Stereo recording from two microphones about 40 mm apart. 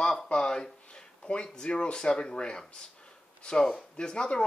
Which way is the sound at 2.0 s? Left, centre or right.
Centre.